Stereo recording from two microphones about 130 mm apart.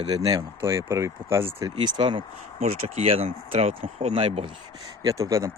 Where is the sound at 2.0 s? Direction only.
40° right (ahead or behind).